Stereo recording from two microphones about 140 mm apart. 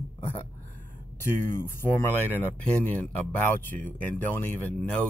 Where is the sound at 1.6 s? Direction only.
15° left (ahead or behind).